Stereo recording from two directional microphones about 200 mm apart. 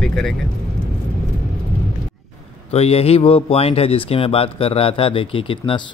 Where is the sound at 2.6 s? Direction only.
30° left (ahead or behind).